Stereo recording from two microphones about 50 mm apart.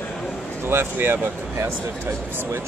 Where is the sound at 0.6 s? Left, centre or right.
Right.